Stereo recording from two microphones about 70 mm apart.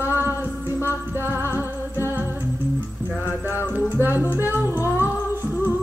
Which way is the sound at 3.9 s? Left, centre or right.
Right.